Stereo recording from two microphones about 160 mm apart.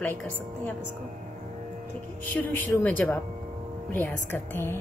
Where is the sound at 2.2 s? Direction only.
10° left (ahead or behind).